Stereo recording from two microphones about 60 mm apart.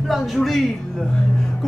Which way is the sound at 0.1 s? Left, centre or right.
Centre.